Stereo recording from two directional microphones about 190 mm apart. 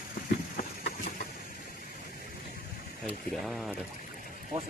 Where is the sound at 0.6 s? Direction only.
50° left (ahead or behind).